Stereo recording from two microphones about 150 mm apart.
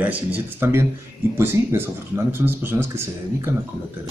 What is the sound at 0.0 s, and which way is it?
Speech, 10° right (ahead or behind).